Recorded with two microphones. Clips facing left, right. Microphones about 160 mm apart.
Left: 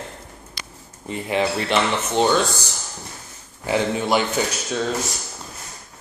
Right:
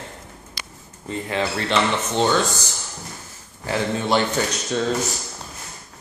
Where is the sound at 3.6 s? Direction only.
15° left (ahead or behind).